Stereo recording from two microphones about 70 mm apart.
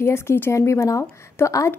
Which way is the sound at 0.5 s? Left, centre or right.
Left.